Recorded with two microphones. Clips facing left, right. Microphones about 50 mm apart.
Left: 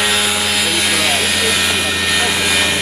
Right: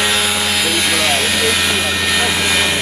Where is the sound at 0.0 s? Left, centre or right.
Centre.